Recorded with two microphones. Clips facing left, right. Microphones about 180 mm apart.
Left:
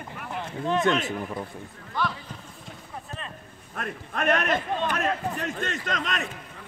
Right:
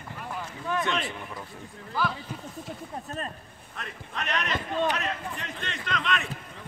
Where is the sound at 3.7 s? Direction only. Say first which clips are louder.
Left 6 dB; 50° left (ahead or behind).